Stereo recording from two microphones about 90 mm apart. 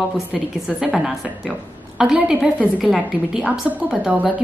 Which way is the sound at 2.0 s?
5° right (ahead or behind).